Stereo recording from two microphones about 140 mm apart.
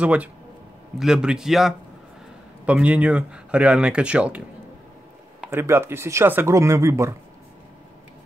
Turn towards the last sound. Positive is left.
turn(degrees=-20)  # may be behind; listen again after turning